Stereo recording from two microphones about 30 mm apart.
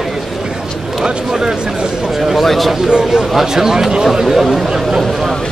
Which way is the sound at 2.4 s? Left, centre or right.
Centre.